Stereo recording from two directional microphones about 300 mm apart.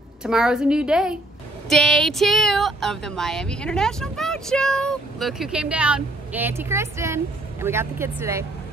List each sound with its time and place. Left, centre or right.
0.2 s speech: centre